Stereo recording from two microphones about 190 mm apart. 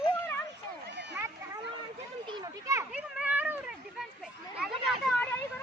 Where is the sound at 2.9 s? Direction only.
5° right (ahead or behind).